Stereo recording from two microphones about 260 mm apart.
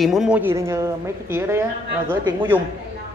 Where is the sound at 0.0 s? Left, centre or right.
Centre.